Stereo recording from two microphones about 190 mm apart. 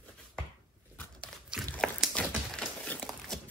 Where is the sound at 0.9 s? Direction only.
5° left (ahead or behind).